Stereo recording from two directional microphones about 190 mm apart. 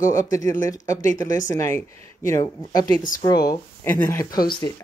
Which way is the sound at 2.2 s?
15° left (ahead or behind).